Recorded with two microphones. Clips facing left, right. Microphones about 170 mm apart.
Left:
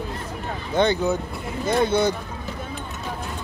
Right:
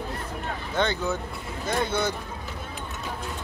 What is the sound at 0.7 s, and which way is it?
Speech, 15° left (ahead or behind).